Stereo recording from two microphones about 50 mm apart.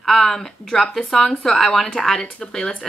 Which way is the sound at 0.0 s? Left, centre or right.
Centre.